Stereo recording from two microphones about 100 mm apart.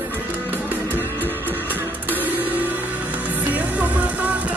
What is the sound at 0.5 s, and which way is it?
Music, 20° right (ahead or behind).